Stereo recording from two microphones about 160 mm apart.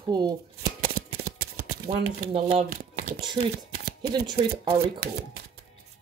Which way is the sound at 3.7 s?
75° right (ahead or behind).